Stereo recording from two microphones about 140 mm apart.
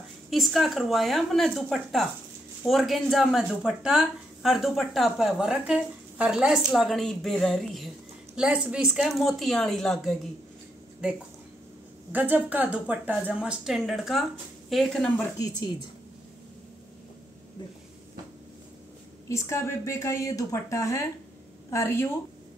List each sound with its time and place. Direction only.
0.3 s speech: centre (ahead or behind)
12.1 s a woman's voice: 10° right (ahead or behind); by 15.2 s 5° left (ahead or behind)
15.3 s speech: 25° left (ahead or behind)
19.2 s a woman's voice: 20° left (ahead or behind)